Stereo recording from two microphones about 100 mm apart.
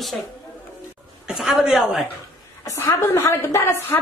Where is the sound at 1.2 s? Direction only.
5° right (ahead or behind).